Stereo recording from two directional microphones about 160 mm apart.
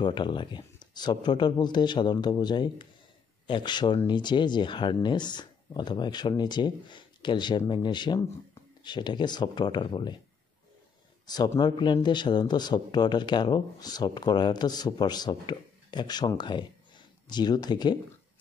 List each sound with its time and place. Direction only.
0.0 s speech: 30° left (ahead or behind)
11.2 s speech: 25° left (ahead or behind)